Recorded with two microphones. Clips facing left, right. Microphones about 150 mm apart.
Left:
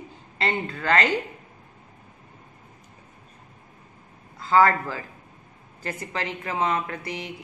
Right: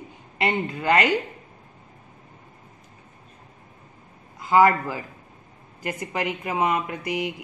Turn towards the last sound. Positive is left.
turn(degrees=-15)  # may be behind; listen again after turning